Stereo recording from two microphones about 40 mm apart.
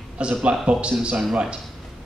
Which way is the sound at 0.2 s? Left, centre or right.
Right.